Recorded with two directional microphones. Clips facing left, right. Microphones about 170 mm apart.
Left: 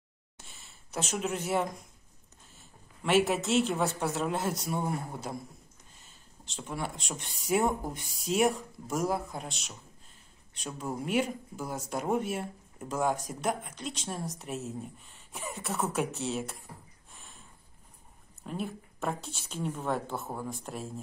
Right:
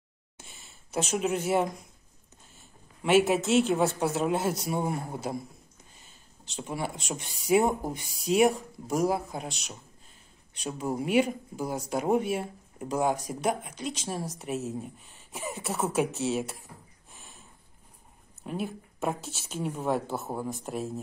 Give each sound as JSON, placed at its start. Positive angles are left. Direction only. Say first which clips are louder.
{"t": 0.4, "sound": "a sound", "louder": "right 3 dB", "side_deg": 0}
{"t": 3.0, "sound": "speech", "louder": "right 3 dB", "side_deg": 0}
{"t": 4.7, "sound": "a man's voice", "louder": "right 3 dB", "side_deg": -20}
{"t": 6.4, "sound": "speech", "louder": "right 3 dB", "side_deg": 0}
{"t": 11.0, "sound": "speech", "louder": "right 5 dB", "side_deg": -5}
{"t": 17.1, "sound": "a sound", "louder": "right 2 dB", "side_deg": 0}
{"t": 18.4, "sound": "speech", "louder": "right 3 dB", "side_deg": -5}
{"t": 20.2, "sound": "speech", "louder": "right 4 dB", "side_deg": -20}
{"t": 20.6, "sound": "speech", "louder": "right 6 dB", "side_deg": -5}